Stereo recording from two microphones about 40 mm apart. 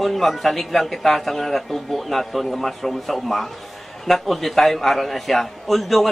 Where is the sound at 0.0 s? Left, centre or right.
Centre.